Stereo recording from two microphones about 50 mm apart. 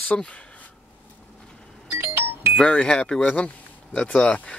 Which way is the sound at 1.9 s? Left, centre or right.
Right.